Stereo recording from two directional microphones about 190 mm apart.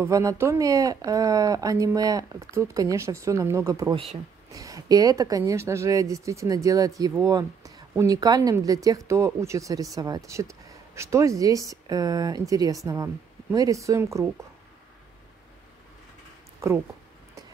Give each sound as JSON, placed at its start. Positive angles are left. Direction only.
{"t": 0.0, "sound": "speech", "side_deg": -15}
{"t": 3.9, "sound": "speech", "side_deg": -30}
{"t": 4.5, "sound": "speech", "side_deg": -20}
{"t": 16.6, "sound": "speech", "side_deg": -15}